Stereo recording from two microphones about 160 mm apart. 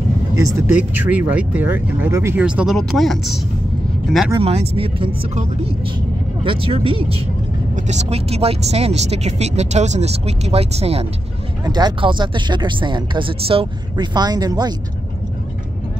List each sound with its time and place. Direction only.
0.4 s speech: 20° right (ahead or behind)
0.7 s speech: 10° right (ahead or behind)
2.4 s speech: 5° right (ahead or behind)
4.4 s speech: 40° right (ahead or behind)
5.3 s a woman's voice: 45° right (ahead or behind)
6.4 s speech: 35° right (ahead or behind)
11.6 s speech: 25° right (ahead or behind)